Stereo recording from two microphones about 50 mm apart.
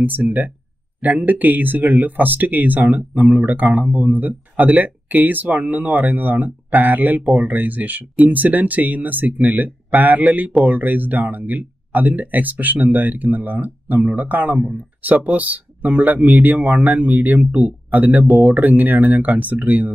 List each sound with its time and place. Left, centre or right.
0.0 s speech: right